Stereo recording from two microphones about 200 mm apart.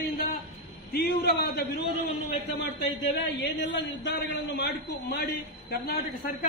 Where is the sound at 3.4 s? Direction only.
60° left (ahead or behind).